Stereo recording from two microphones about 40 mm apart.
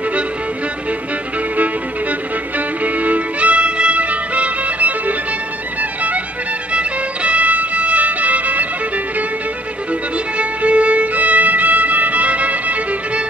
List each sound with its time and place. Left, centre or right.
2.8 s music: right
10.1 s violin: right